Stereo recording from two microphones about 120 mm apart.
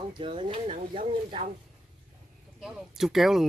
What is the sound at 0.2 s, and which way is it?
Speech, 45° right (ahead or behind).